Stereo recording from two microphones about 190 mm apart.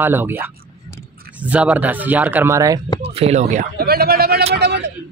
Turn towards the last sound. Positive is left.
turn(degrees=-60)  # may be behind; listen again after turning